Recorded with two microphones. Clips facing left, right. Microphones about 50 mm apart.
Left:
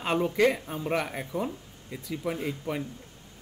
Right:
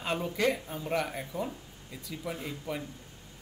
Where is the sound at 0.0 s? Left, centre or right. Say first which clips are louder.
Left 5 dB; left.